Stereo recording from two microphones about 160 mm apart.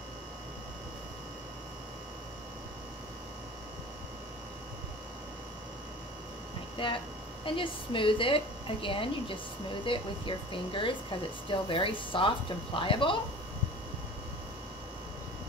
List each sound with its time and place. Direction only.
7.4 s speech: 30° left (ahead or behind)